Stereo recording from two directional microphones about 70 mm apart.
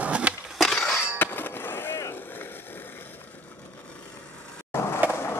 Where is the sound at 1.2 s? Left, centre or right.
Left.